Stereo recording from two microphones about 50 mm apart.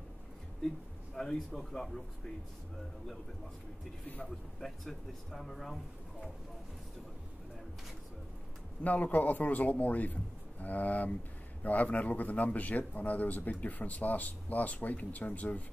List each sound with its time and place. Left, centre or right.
1.1 s speech: centre
4.6 s speech: centre
8.8 s speech: left